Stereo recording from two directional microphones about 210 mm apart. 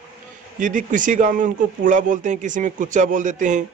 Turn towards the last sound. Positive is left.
turn(degrees=-35)  # may be behind; listen again after turning